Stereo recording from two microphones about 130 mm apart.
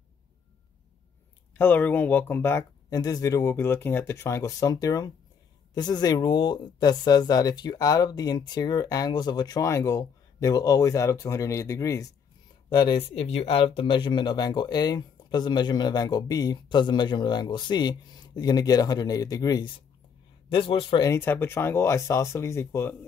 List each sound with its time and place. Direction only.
1.6 s speech: 15° left (ahead or behind)
3.0 s speech: 30° left (ahead or behind)
12.6 s speech: 35° left (ahead or behind)
20.5 s speech: 40° left (ahead or behind)
21.0 s speech: 20° left (ahead or behind)